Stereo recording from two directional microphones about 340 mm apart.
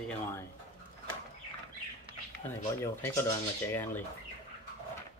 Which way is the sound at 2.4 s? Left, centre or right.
Centre.